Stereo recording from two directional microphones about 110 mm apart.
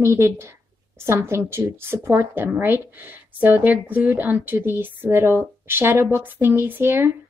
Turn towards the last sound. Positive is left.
turn(degrees=-20)  # may be behind; listen again after turning